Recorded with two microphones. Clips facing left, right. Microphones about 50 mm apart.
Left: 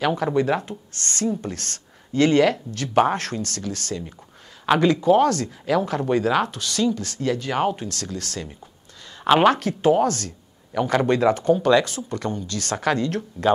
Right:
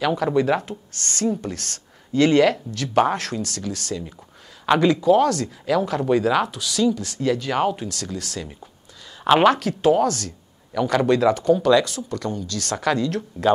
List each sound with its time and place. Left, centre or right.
0.1 s speech: centre
9.2 s speech: centre